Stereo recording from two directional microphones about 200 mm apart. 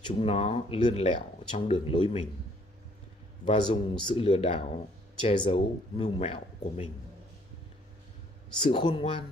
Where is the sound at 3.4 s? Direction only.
25° left (ahead or behind).